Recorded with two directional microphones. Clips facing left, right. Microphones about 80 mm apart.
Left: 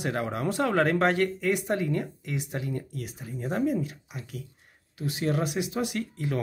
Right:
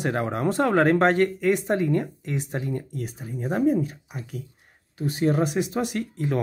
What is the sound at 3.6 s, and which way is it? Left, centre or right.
Speech, right.